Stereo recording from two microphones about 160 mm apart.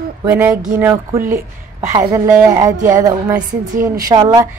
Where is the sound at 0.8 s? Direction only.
15° right (ahead or behind).